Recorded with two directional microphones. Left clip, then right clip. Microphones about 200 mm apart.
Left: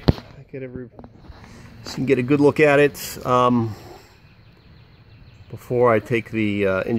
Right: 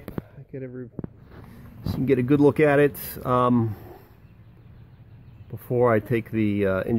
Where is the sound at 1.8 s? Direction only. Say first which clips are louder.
Left 3 dB; 5° left (ahead or behind).